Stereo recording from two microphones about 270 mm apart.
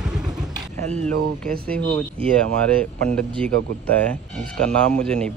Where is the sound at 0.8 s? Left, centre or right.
Right.